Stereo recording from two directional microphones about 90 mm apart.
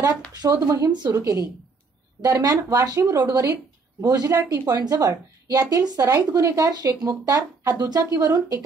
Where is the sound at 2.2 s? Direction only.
40° right (ahead or behind).